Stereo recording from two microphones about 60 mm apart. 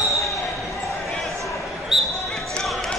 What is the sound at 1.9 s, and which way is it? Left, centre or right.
Basketball bounce, centre.